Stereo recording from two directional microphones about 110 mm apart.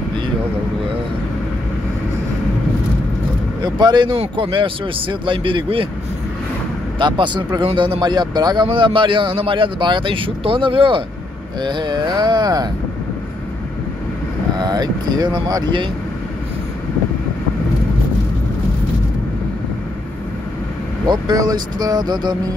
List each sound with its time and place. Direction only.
3.6 s speech: 40° right (ahead or behind)
7.0 s speech: 45° right (ahead or behind)
14.6 s speech: 40° right (ahead or behind)
21.0 s speech: 35° right (ahead or behind)